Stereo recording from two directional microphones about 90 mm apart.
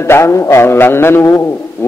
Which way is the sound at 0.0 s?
30° left (ahead or behind).